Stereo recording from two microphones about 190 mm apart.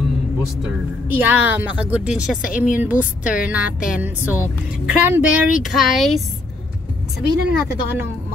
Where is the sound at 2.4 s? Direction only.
45° left (ahead or behind).